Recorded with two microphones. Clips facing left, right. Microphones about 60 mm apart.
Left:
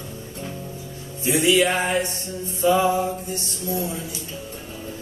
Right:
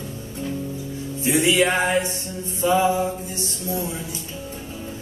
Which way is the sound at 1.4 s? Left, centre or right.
Right.